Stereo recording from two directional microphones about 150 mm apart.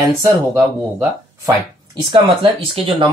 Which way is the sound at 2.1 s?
35° right (ahead or behind).